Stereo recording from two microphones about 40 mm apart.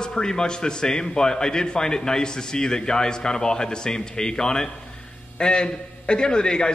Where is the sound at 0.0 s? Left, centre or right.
Centre.